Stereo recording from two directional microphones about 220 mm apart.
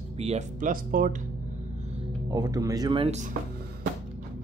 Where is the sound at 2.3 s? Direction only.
15° right (ahead or behind).